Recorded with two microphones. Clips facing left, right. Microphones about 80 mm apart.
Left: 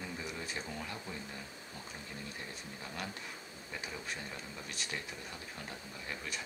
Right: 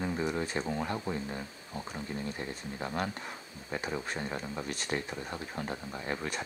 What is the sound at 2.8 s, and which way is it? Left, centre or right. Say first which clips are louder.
Speech: right 9 dB; right.